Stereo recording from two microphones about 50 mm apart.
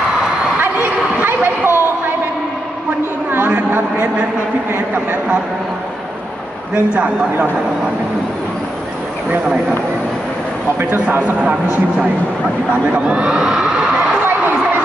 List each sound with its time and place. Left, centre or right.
1.2 s a sound: right
3.3 s a sound: right
4.7 s speech: right
6.7 s speech: right
11.1 s speech: right
12.8 s speech: right
13.4 s children shouting: centre